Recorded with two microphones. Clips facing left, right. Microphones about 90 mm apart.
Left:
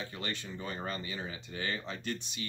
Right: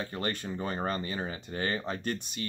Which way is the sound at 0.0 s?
45° right (ahead or behind).